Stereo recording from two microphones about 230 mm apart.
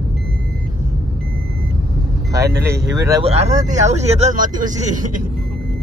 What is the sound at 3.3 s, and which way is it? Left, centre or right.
Speech, right.